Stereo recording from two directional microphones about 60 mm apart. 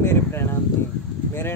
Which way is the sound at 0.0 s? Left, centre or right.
Left.